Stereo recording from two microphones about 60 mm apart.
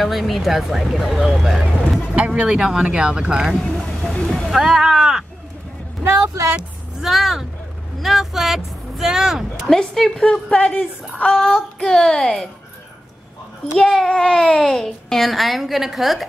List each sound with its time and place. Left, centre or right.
0.0 s speech: centre
2.1 s speech: right
2.4 s speech: centre
3.6 s a sound: centre
4.5 s speech: centre
7.0 s speech: centre
9.7 s child singing: centre
10.6 s speech: left
11.3 s child singing: centre
13.8 s speech: centre